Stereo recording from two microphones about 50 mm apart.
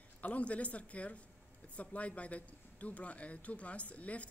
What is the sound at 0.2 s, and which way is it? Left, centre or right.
Speech, left.